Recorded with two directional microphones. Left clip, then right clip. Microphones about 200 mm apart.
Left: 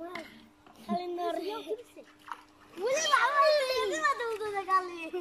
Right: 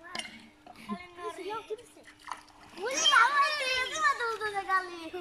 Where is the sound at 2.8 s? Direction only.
20° left (ahead or behind).